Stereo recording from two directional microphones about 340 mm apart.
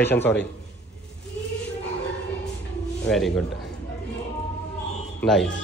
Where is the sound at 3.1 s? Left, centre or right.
Centre.